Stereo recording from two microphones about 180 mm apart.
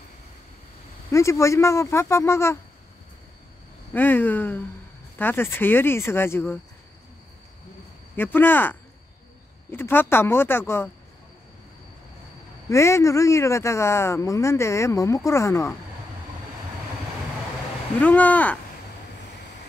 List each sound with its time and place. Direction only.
1.1 s speech: 15° left (ahead or behind)
3.9 s speech: 10° left (ahead or behind)
8.2 s speech: 10° left (ahead or behind)
12.6 s speech: 15° left (ahead or behind)
18.0 s speech: 10° left (ahead or behind)